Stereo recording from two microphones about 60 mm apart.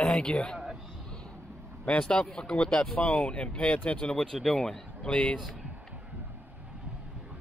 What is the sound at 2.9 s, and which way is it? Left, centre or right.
Speech, left.